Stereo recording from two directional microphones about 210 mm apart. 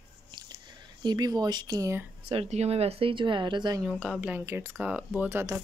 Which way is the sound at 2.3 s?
30° right (ahead or behind).